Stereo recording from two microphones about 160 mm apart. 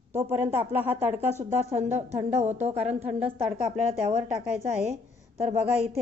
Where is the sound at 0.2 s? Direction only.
15° right (ahead or behind).